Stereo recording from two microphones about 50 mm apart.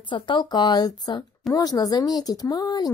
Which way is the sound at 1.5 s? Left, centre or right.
Centre.